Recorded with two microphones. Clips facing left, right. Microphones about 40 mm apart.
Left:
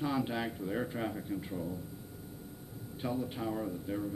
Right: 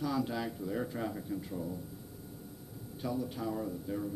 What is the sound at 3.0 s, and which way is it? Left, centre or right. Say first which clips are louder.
Speech: even; left.